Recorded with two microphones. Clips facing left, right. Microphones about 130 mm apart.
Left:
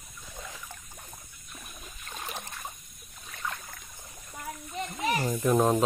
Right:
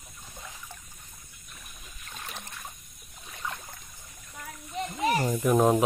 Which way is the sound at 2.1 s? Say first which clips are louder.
Left 3 dB; 15° left (ahead or behind).